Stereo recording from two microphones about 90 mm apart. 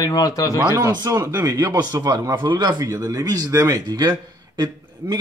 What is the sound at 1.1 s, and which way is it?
Speech, 35° right (ahead or behind).